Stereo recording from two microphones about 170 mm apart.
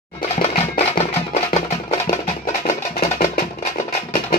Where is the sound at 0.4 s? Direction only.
40° left (ahead or behind).